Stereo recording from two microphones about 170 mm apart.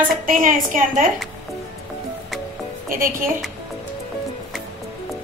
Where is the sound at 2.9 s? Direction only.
55° right (ahead or behind).